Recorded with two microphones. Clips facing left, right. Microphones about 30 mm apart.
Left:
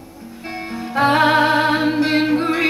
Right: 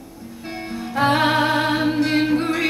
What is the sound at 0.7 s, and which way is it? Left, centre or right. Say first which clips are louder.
Music: left 2 dB; centre.